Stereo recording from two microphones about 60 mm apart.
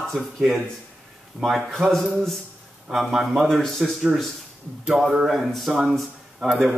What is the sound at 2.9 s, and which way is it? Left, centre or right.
Speech, centre.